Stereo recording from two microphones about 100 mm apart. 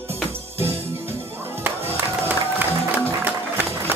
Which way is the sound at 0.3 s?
25° right (ahead or behind).